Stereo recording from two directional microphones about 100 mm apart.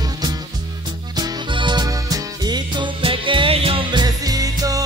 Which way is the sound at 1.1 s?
50° right (ahead or behind).